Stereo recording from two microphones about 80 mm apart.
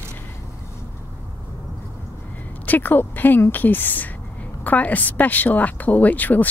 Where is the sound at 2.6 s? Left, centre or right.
Left.